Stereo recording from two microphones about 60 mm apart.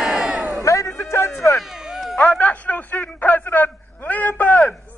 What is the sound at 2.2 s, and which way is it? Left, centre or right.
Radio, left.